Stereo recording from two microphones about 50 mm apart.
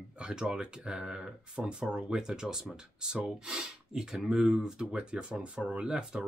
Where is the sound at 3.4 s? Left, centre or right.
Centre.